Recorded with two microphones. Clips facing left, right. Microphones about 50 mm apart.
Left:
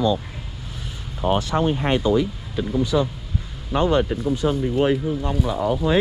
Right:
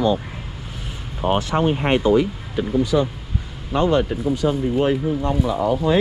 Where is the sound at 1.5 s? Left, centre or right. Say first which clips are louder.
Right 2 dB; right.